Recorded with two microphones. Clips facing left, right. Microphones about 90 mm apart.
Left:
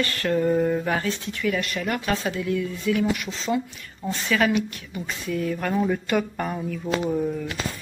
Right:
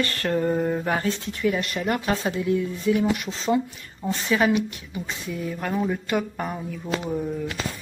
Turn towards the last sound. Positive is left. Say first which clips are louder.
# left 3 dB
turn(degrees=-5)  # may be behind; listen again after turning